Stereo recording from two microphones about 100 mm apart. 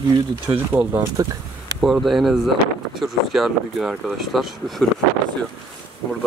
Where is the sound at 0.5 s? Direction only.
45° right (ahead or behind).